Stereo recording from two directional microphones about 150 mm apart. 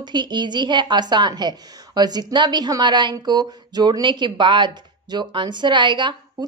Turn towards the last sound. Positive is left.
turn(degrees=-30)  # may be behind; listen again after turning